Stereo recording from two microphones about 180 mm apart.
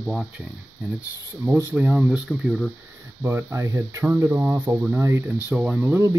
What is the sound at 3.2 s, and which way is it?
Speech, 15° right (ahead or behind).